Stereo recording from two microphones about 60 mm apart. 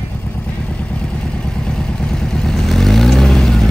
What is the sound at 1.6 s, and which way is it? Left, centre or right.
Vehicle, centre.